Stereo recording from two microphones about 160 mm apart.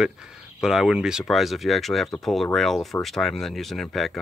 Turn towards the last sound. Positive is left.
turn(degrees=0)  # may be behind; listen again after turning